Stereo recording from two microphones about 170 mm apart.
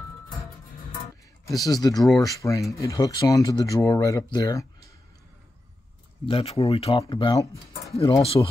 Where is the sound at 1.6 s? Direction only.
20° left (ahead or behind).